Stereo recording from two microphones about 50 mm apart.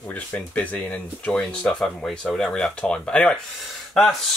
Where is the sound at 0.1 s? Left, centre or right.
Left.